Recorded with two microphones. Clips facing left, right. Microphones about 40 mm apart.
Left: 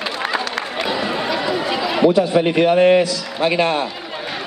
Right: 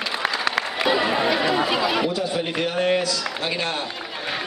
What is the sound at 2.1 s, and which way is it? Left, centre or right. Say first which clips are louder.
A man's voice: left 9 dB; left.